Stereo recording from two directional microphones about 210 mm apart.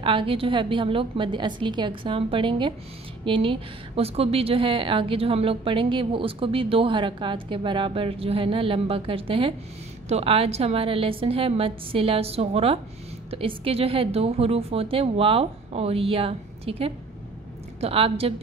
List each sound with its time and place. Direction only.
0.0 s a woman's voice: 25° right (ahead or behind)